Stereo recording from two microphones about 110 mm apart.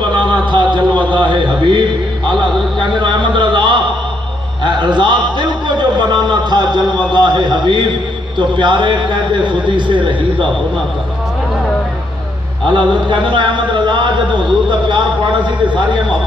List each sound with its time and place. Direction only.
0.3 s a sound: 45° right (ahead or behind)
8.4 s a man's voice: 45° right (ahead or behind)
12.6 s a man's voice: 45° right (ahead or behind)